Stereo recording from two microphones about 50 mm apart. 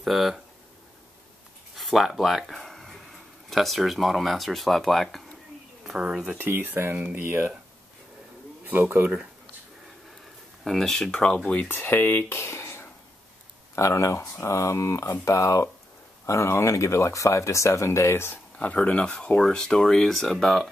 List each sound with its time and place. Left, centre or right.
0.0 s speech: centre
1.8 s speech: centre
5.9 s speech: centre
6.4 s speech: right
8.6 s speech: right
10.6 s speech: centre
11.7 s speech: left
12.3 s speech: left
13.7 s speech: left
16.3 s speech: left
18.8 s speech: left